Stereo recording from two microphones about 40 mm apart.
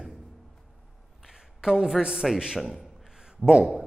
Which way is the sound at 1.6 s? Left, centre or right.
Centre.